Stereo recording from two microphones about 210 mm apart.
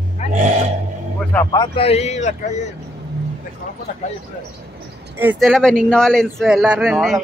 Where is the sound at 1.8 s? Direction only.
30° left (ahead or behind).